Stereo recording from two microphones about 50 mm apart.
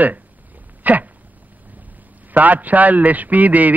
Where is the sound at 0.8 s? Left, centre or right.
Right.